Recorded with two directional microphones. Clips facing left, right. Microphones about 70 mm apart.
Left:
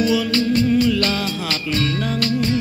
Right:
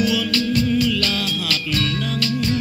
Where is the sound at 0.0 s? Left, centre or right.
Left.